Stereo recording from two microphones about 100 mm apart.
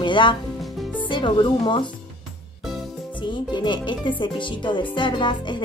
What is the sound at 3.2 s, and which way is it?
A woman's voice, 50° left (ahead or behind).